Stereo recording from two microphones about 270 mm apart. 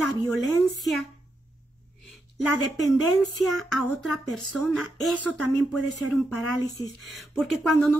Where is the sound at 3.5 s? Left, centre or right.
Centre.